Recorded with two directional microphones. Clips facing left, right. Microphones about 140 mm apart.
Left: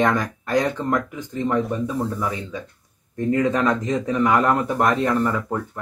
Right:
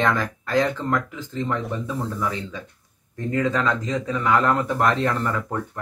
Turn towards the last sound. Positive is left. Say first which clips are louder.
# left 3 dB
turn(degrees=15)  # may be behind; listen again after turning